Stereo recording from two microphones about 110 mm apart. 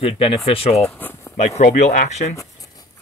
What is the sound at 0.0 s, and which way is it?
Speech, 60° left (ahead or behind).